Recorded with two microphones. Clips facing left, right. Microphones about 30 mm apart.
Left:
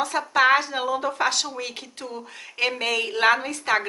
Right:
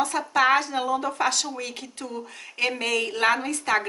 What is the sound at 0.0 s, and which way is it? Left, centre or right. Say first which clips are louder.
A woman's voice: left 2 dB; centre.